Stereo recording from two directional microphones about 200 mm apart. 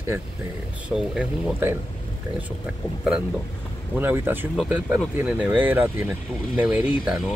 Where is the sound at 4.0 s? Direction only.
10° right (ahead or behind).